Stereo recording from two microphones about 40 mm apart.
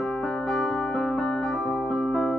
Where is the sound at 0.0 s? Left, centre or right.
Centre.